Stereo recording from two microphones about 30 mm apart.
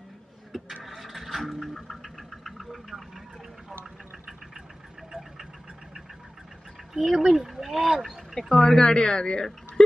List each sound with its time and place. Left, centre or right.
0.8 s a sound: centre
6.9 s speech: centre
8.4 s speech: centre